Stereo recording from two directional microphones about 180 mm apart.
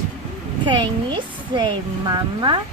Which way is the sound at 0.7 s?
25° right (ahead or behind).